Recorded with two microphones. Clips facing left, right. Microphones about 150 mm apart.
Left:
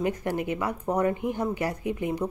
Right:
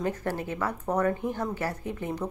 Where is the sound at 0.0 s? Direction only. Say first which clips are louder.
Left 3 dB; 15° left (ahead or behind).